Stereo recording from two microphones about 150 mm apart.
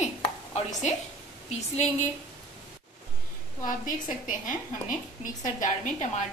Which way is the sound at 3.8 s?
60° left (ahead or behind).